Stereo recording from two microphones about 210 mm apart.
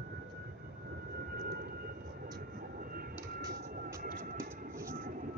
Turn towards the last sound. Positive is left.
turn(degrees=-40)  # may be behind; listen again after turning